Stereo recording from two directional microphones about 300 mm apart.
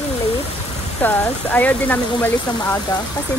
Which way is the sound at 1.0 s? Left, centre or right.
Centre.